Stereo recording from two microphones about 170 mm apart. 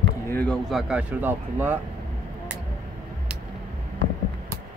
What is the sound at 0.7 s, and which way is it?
Speech, 5° right (ahead or behind).